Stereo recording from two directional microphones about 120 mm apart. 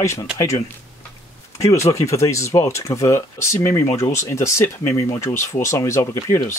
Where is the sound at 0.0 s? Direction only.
25° left (ahead or behind).